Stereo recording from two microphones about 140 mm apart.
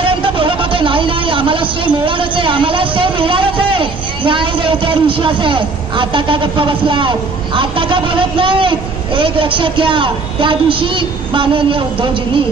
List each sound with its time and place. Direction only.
0.0 s speech: 40° right (ahead or behind)